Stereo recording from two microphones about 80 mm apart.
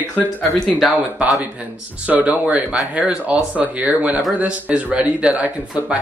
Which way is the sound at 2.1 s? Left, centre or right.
Centre.